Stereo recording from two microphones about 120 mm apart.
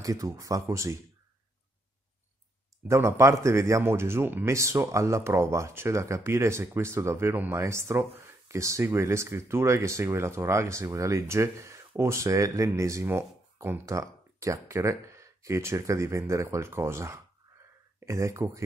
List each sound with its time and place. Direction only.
0.0 s speech: 30° right (ahead or behind)
2.9 s speech: 25° right (ahead or behind)